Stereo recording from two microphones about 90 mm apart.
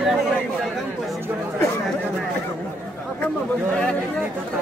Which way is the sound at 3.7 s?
15° left (ahead or behind).